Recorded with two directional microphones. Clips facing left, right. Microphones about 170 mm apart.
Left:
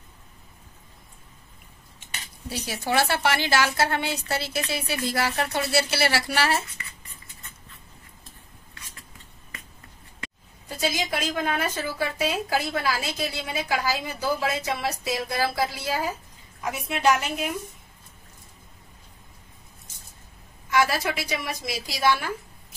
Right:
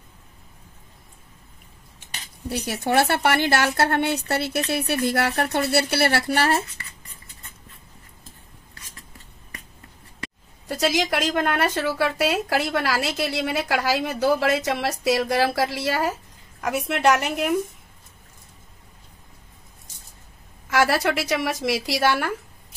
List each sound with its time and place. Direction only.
2.5 s a woman's voice: 60° right (ahead or behind)
10.7 s a woman's voice: 80° right
20.7 s a woman's voice: 75° right (ahead or behind)